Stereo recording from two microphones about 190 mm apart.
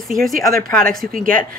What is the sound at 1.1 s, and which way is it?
Speech, 45° right (ahead or behind).